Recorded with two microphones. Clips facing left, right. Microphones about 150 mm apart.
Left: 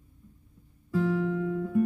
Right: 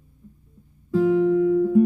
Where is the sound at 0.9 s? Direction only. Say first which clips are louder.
Right 9 dB; 15° right (ahead or behind).